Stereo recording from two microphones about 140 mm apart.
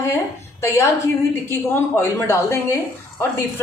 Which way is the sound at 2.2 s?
20° left (ahead or behind).